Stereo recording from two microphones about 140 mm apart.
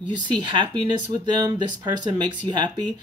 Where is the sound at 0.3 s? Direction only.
35° right (ahead or behind).